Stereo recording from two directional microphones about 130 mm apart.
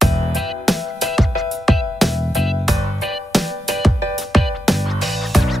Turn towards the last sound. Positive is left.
turn(degrees=0)  # may be behind; listen again after turning